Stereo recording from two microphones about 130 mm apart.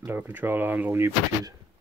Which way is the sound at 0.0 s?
15° right (ahead or behind).